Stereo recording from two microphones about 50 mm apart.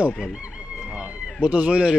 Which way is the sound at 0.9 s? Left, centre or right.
Right.